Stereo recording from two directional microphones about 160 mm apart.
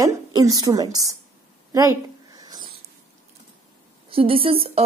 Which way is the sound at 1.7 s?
20° right (ahead or behind).